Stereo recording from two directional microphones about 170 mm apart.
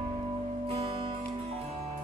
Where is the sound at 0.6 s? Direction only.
35° right (ahead or behind).